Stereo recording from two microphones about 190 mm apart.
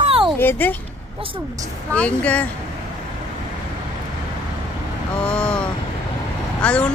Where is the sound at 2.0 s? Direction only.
5° left (ahead or behind).